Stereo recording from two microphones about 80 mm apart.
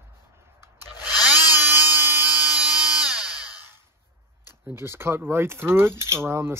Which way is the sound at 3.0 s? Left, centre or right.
Centre.